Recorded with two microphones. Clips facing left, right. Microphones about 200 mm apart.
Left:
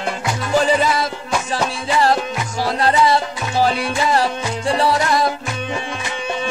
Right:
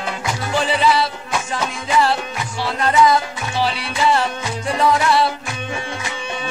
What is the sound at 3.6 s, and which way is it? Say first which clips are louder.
Music: left 3 dB; 45° left (ahead or behind).